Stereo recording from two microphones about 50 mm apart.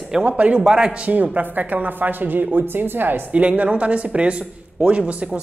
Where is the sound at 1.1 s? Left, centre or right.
Right.